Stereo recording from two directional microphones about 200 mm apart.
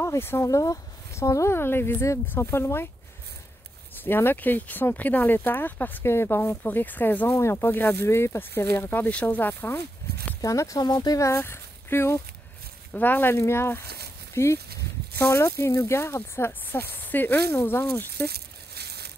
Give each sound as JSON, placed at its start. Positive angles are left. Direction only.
{"t": 0.0, "sound": "speech", "side_deg": 10}
{"t": 3.9, "sound": "speech", "side_deg": 10}
{"t": 18.2, "sound": "a sound", "side_deg": -55}